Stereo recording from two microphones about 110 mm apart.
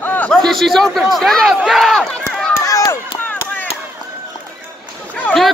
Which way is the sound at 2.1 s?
10° left (ahead or behind).